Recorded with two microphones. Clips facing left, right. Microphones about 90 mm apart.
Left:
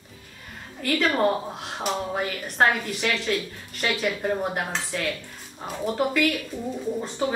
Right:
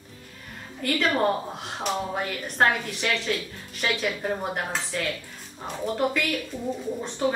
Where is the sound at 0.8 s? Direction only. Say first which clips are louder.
Left 1 dB; centre (ahead or behind).